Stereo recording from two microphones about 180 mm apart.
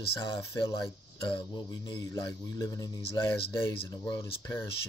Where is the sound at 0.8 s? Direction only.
25° left (ahead or behind).